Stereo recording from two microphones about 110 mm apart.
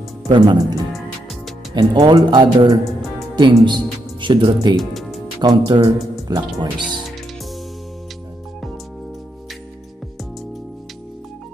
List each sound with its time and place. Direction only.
0.3 s speech: 40° right (ahead or behind)
4.7 s music: centre (ahead or behind)
5.4 s speech: 40° right (ahead or behind)